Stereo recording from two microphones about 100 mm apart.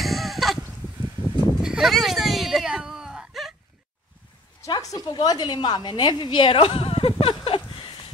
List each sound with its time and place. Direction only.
0.0 s a sound: centre (ahead or behind)
1.6 s whimper: 5° right (ahead or behind)
4.6 s a woman's voice: 40° left (ahead or behind); by 7.6 s 70° left (ahead or behind)